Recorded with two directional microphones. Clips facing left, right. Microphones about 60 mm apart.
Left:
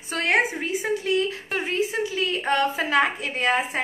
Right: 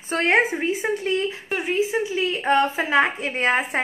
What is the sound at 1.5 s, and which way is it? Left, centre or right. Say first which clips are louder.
A woman's voice: right 2 dB; centre.